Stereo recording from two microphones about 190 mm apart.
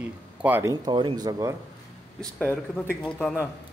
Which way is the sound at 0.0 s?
10° right (ahead or behind).